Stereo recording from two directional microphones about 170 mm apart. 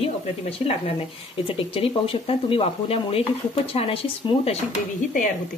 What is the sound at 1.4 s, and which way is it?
Speech, 30° left (ahead or behind).